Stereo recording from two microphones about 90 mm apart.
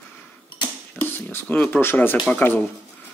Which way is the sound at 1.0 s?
25° left (ahead or behind).